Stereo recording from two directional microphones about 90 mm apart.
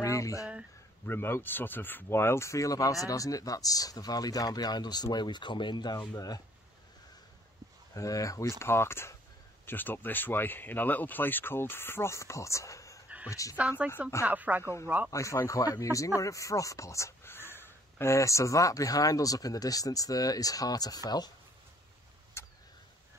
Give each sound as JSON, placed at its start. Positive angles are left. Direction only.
{"t": 0.0, "sound": "a sound", "side_deg": 35}
{"t": 1.0, "sound": "speech", "side_deg": 25}
{"t": 7.9, "sound": "speech", "side_deg": 40}
{"t": 13.6, "sound": "speech", "side_deg": -15}
{"t": 15.0, "sound": "speech", "side_deg": 35}
{"t": 22.4, "sound": "vehicle", "side_deg": 30}